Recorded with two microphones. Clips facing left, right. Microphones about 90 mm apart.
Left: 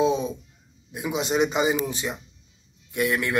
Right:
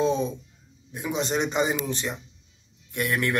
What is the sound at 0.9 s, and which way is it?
A man's voice, 5° left (ahead or behind).